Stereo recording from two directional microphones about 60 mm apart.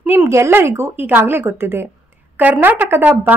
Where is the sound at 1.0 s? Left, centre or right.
Right.